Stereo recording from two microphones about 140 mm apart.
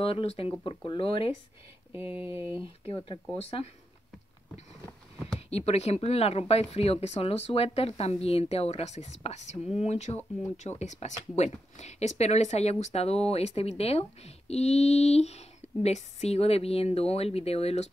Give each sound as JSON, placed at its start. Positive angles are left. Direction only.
{"t": 0.0, "sound": "speech", "side_deg": 40}
{"t": 1.9, "sound": "speech", "side_deg": -15}
{"t": 2.6, "sound": "speech", "side_deg": 40}
{"t": 5.5, "sound": "speech", "side_deg": 50}